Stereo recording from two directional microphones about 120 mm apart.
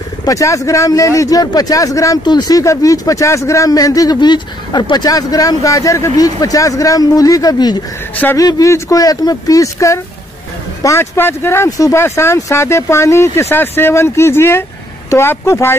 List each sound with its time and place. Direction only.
0.2 s speech: 25° left (ahead or behind)